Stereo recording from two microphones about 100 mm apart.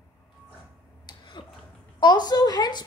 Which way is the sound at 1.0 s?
50° left (ahead or behind).